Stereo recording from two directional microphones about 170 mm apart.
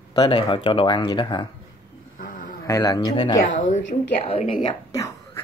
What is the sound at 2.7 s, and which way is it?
Speech, 20° left (ahead or behind).